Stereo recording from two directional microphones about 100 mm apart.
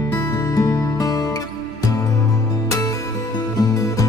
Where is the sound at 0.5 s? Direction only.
35° left (ahead or behind).